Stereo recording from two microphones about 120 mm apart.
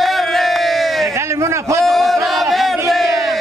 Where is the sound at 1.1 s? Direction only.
25° right (ahead or behind).